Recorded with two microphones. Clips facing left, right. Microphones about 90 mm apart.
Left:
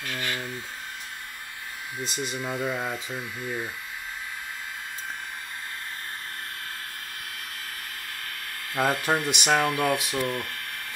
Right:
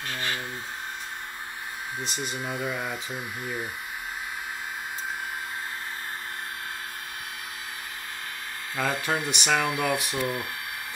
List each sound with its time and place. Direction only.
0.0 s a sound: 25° right (ahead or behind)
2.0 s speech: 30° right (ahead or behind)
2.3 s speech: 15° right (ahead or behind)
8.7 s speech: centre (ahead or behind)